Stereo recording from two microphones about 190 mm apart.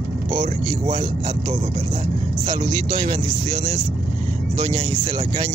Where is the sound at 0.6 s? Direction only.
20° right (ahead or behind).